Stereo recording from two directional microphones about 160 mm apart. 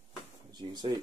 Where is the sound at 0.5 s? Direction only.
25° right (ahead or behind).